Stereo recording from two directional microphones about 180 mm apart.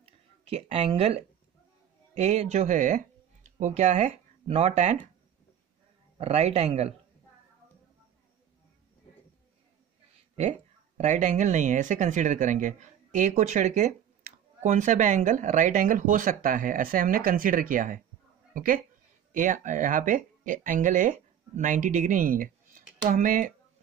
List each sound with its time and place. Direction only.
0.0 s a sound: 35° right (ahead or behind)
2.1 s speech: 35° right (ahead or behind)
6.1 s speech: 35° right (ahead or behind)
11.0 s a woman's voice: 45° right (ahead or behind)